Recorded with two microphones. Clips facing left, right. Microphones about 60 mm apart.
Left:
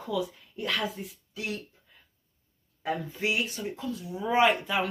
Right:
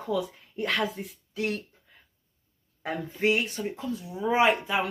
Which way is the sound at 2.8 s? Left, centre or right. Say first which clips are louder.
Right 3 dB; right.